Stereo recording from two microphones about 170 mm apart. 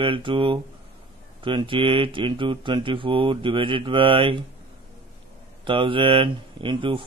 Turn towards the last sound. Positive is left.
turn(degrees=-30)  # may be behind; listen again after turning